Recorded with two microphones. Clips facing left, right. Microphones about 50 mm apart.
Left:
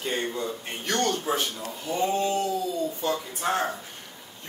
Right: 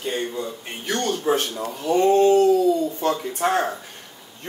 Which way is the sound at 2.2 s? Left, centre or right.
Right.